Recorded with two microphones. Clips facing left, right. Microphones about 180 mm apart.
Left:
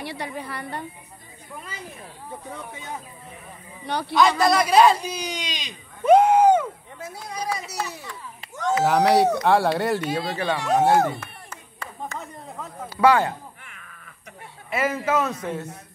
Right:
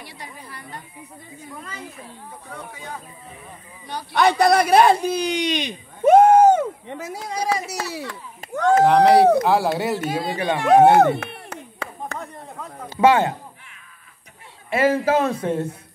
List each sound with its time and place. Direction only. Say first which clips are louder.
0.0 s a woman's voice: left 8 dB; 70° left (ahead or behind)
3.8 s a woman's voice: left 5 dB; 65° left (ahead or behind)
4.1 s a man's voice: right 3 dB; 65° right (ahead or behind); by 6.6 s 45° right (ahead or behind)
6.9 s speech: right 6 dB; 90° right; by 8.8 s 60° right (ahead or behind)
8.8 s speech: right 4 dB; centre (ahead or behind)
10.1 s speech: right 2 dB; 15° right (ahead or behind)
10.6 s speech: right 7 dB; 65° right (ahead or behind)
12.2 s chatter: right 2 dB; centre (ahead or behind)
12.9 s speech: right 2 dB; 20° right (ahead or behind)
14.7 s a man's voice: right 5 dB; 30° right (ahead or behind)